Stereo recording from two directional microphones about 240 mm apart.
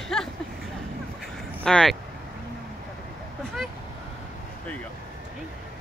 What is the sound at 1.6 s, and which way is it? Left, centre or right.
Speech, centre.